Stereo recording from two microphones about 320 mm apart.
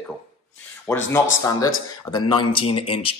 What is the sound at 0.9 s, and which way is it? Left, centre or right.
A man's voice, centre.